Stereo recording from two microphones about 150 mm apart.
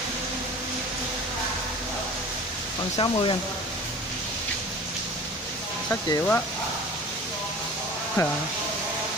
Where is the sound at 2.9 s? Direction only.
30° left (ahead or behind).